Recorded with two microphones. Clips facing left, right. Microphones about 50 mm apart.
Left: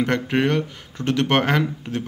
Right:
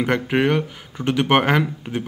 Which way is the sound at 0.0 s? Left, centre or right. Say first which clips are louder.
Right 1 dB; centre.